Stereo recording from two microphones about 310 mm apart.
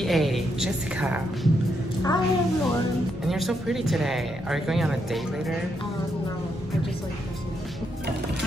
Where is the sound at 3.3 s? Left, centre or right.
Centre.